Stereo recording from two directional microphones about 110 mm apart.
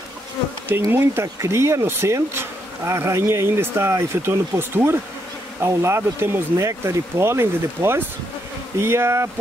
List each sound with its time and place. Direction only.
0.8 s speech: 20° right (ahead or behind)